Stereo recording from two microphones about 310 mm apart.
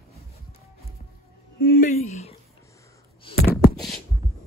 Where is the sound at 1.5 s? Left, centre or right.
Left.